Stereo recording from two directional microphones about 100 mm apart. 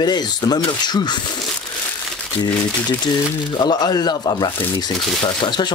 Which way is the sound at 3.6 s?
45° left (ahead or behind).